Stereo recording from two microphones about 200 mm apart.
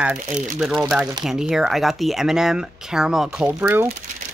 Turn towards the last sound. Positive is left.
turn(degrees=-10)  # may be behind; listen again after turning